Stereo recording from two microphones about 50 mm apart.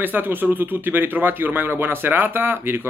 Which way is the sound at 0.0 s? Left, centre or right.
Right.